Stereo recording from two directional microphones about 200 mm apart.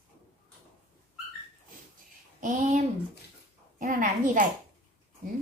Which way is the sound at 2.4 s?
40° right (ahead or behind).